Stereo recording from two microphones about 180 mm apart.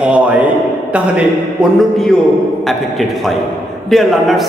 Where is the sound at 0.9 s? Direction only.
5° right (ahead or behind).